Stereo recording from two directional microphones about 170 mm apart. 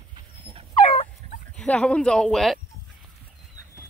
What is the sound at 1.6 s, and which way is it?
Speech, 5° left (ahead or behind).